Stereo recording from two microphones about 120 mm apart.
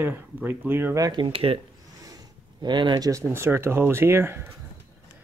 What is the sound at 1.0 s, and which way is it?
Speech, 35° right (ahead or behind).